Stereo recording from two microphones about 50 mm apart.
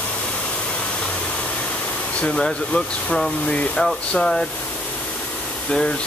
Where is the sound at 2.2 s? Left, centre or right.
Centre.